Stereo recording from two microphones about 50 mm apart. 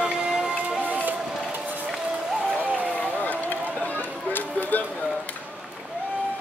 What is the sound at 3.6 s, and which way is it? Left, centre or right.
Music, right.